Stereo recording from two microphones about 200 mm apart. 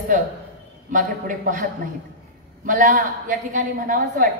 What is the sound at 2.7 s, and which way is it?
A woman's voice, 40° right (ahead or behind).